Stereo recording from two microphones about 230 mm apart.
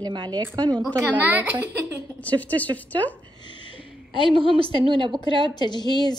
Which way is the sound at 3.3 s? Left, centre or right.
Centre.